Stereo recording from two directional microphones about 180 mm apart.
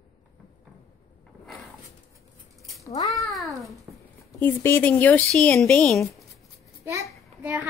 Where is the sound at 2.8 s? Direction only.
15° left (ahead or behind).